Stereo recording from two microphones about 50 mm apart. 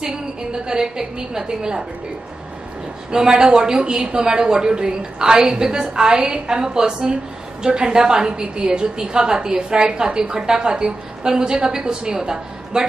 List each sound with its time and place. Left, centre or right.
0.0 s a woman's voice: centre
3.1 s a woman's voice: centre